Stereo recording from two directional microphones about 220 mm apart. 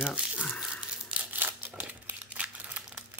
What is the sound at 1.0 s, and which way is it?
Crumpling, 5° right (ahead or behind).